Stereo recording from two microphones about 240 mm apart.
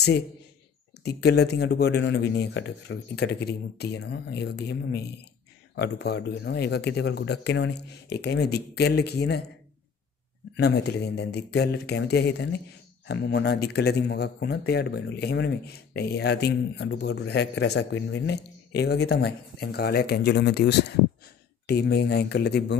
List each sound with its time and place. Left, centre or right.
1.0 s a man's voice: left
10.5 s a man's voice: left